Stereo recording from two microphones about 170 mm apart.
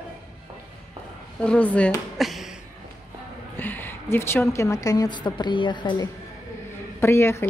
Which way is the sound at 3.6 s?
10° left (ahead or behind).